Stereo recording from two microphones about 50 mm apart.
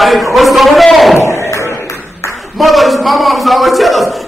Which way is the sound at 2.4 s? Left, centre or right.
Centre.